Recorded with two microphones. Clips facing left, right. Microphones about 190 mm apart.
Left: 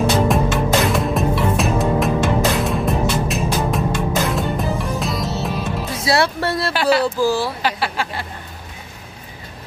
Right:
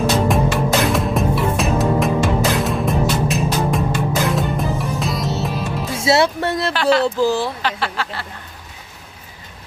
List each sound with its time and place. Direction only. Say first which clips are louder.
0.3 s music: even; centre (ahead or behind)
5.9 s music: right 3 dB; 20° right (ahead or behind)
6.7 s a sound: right 1 dB; 10° left (ahead or behind)
7.2 s speech: right 1 dB; 20° right (ahead or behind)
7.6 s speech: left 1 dB; 10° left (ahead or behind)